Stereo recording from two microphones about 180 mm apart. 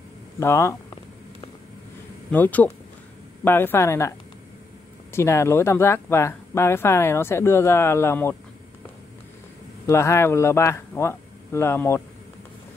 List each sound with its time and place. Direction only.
0.4 s speech: 15° left (ahead or behind)
2.3 s speech: 10° left (ahead or behind)
5.1 s speech: 15° left (ahead or behind)
9.8 s speech: 15° left (ahead or behind)